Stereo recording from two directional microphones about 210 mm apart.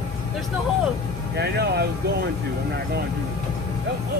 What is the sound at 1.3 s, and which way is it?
Vehicle, 50° right (ahead or behind).